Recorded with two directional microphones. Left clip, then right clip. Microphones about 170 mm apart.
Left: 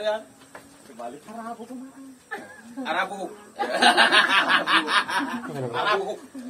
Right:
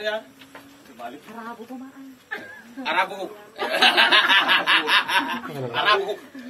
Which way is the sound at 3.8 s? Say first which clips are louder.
Right 1 dB; 65° left (ahead or behind).